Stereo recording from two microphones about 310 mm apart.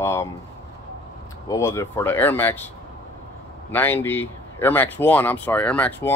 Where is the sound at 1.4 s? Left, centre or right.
Centre.